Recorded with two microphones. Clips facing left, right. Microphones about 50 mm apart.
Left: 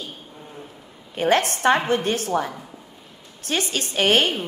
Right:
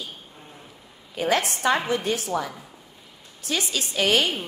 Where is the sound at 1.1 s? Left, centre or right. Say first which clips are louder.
Left 4 dB; left.